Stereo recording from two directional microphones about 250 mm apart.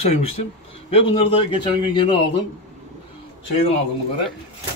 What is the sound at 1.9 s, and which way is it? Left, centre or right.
Speech, centre.